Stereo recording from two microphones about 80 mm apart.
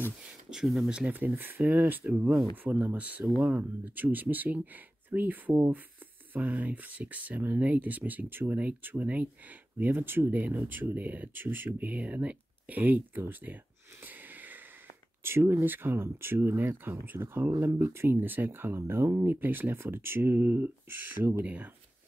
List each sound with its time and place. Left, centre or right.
0.5 s speech: centre; by 13.6 s right
14.0 s wheeze: right
15.2 s speech: right